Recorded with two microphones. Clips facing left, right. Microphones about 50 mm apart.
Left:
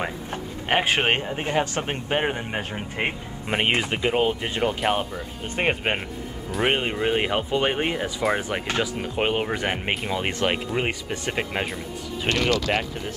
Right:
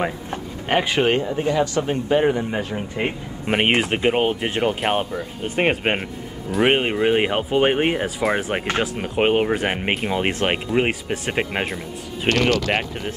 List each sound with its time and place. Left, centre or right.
0.9 s speech: left
3.0 s speech: centre
3.4 s speech: centre
8.2 s speech: centre
8.6 s speech: right
9.1 s speech: right
12.3 s speech: right